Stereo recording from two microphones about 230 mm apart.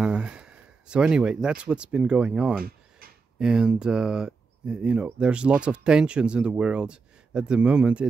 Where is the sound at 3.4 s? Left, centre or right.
Centre.